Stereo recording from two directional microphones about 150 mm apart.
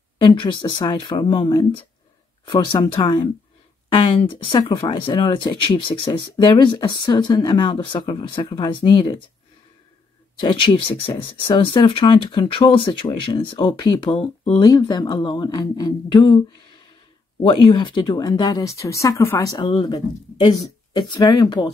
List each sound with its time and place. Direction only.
0.2 s speech: 35° left (ahead or behind)
10.4 s speech: 35° left (ahead or behind)
14.1 s speech: 45° left (ahead or behind)
14.6 s speech: 25° left (ahead or behind)